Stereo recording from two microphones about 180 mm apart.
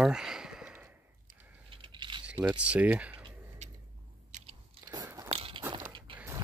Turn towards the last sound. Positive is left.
turn(degrees=-15)  # may be behind; listen again after turning